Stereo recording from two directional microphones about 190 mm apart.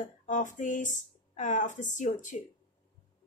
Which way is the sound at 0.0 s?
40° left (ahead or behind).